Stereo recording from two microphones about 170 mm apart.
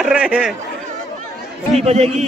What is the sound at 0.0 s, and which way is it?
Speech, 5° right (ahead or behind).